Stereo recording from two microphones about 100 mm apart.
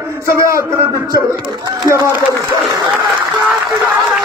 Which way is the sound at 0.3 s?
30° right (ahead or behind).